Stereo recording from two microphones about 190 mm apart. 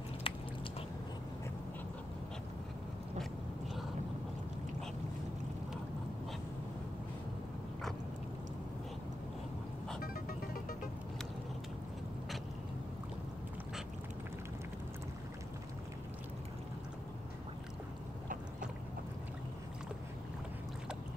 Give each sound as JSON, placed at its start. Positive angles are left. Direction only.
{"t": 0.3, "sound": "biting", "side_deg": 30}
{"t": 10.0, "sound": "music", "side_deg": 50}